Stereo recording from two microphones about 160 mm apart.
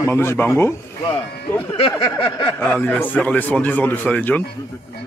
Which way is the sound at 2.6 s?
10° left (ahead or behind).